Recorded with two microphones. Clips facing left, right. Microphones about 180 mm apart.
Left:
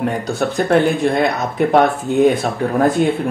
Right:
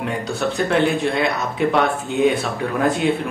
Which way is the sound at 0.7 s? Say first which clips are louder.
Left 5 dB; 45° left (ahead or behind).